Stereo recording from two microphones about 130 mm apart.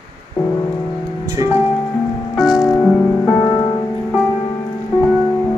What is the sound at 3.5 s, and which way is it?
Music, 35° left (ahead or behind).